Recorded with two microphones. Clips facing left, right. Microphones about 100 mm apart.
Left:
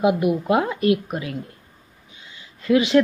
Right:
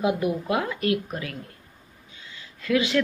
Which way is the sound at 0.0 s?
20° left (ahead or behind).